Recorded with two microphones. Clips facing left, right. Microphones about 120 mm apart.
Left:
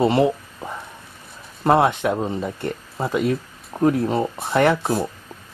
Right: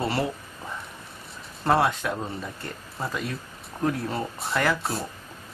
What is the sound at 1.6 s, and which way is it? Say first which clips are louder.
Speech: left 6 dB; 25° left (ahead or behind).